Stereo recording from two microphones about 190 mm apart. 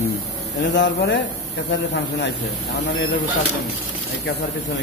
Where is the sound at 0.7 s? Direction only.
70° left (ahead or behind).